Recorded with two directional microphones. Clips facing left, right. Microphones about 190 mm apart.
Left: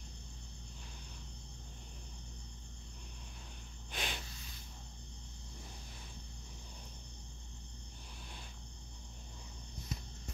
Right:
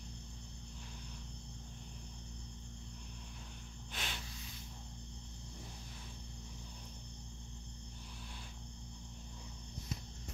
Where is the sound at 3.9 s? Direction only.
15° left (ahead or behind).